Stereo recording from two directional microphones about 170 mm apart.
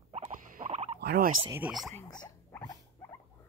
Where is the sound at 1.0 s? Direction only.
65° right (ahead or behind).